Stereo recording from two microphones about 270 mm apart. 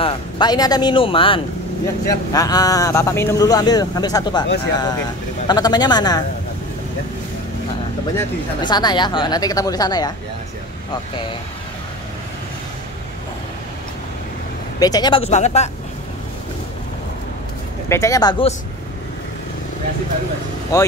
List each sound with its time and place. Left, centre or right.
0.0 s speech: centre
5.5 s speech: centre
8.2 s speech: centre
14.8 s speech: centre
17.8 s speech: centre
20.7 s speech: centre